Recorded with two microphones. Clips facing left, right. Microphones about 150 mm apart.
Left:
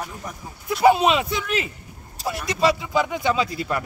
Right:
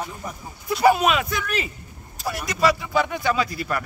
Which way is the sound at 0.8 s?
25° left (ahead or behind).